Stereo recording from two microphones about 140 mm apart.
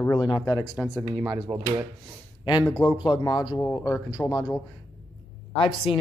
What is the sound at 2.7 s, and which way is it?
Speech, 35° left (ahead or behind).